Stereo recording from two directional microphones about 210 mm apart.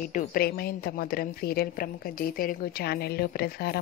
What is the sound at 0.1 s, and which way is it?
A woman's voice, 45° left (ahead or behind).